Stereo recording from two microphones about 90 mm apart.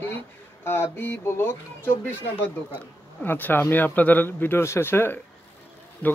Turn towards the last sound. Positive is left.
turn(degrees=20)  # may be behind; listen again after turning